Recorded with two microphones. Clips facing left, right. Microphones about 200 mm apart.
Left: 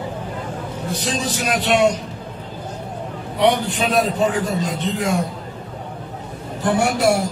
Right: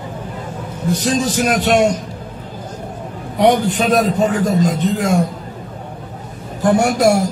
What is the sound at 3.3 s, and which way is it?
A man's voice, 45° right (ahead or behind).